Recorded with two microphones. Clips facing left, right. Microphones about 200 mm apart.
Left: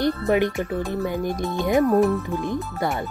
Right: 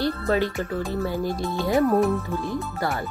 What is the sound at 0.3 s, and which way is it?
Speech, 15° left (ahead or behind).